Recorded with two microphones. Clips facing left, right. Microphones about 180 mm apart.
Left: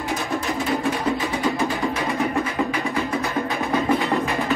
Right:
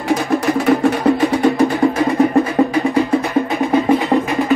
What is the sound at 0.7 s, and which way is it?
Music, 65° right (ahead or behind).